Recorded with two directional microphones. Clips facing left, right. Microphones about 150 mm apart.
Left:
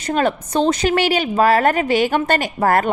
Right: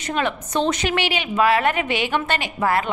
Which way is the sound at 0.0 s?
40° left (ahead or behind).